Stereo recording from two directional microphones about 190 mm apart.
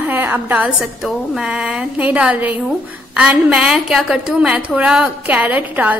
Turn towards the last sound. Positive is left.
turn(degrees=-10)  # may be behind; listen again after turning